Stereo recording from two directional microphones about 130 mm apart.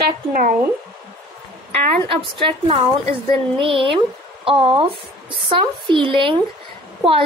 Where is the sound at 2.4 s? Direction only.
45° right (ahead or behind).